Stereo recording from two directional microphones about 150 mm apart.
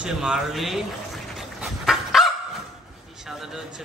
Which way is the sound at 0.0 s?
5° right (ahead or behind).